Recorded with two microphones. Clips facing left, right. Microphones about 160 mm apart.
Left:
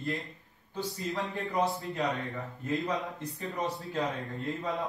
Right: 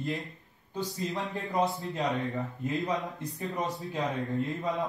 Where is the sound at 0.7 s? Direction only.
20° right (ahead or behind).